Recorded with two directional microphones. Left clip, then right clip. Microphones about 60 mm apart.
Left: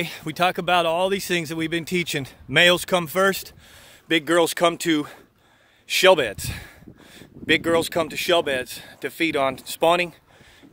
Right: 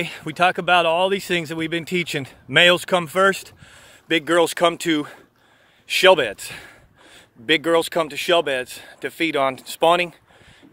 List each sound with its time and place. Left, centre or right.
0.0 s speech: left
7.6 s speech: centre